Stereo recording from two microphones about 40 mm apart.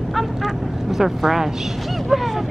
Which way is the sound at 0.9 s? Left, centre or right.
Centre.